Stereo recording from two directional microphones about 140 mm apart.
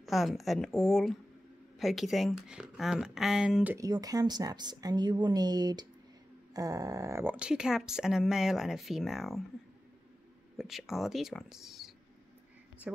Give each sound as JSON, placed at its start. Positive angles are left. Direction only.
{"t": 0.0, "sound": "speech", "side_deg": 0}
{"t": 3.7, "sound": "a woman's voice", "side_deg": -25}
{"t": 7.3, "sound": "speech", "side_deg": -5}
{"t": 10.6, "sound": "speech", "side_deg": 0}